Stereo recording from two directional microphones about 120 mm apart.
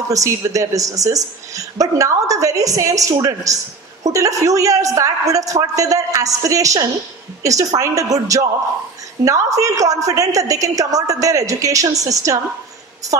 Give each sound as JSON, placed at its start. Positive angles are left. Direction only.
{"t": 0.1, "sound": "speech", "side_deg": -30}